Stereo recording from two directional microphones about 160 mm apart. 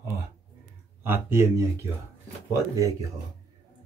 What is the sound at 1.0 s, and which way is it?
Speech, 15° right (ahead or behind).